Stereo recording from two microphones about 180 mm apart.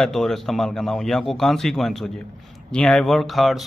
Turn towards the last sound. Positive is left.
turn(degrees=0)  # may be behind; listen again after turning